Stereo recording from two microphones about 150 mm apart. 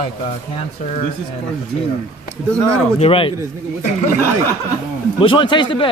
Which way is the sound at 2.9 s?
40° left (ahead or behind).